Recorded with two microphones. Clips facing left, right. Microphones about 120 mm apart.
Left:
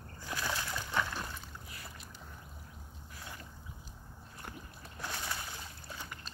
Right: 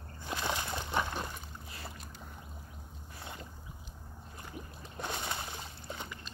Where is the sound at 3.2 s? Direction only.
25° right (ahead or behind).